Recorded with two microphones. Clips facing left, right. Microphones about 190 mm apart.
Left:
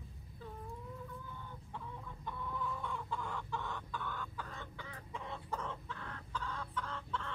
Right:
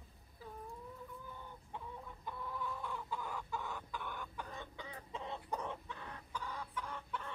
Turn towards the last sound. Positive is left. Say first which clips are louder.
# left 2 dB
turn(degrees=-15)  # may be behind; listen again after turning